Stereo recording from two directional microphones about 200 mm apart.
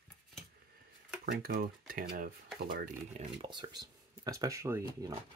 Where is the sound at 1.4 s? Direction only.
45° right (ahead or behind).